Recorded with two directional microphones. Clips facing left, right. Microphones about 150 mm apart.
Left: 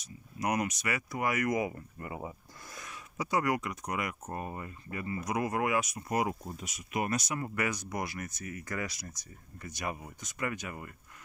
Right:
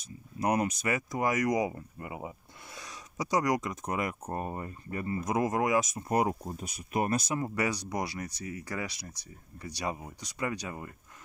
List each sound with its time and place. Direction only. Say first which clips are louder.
0.4 s speech: right 3 dB; 30° right (ahead or behind)
5.9 s speech: right 3 dB; 35° right (ahead or behind)